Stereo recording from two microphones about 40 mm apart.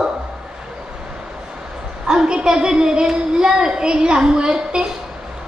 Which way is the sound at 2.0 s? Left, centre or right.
Right.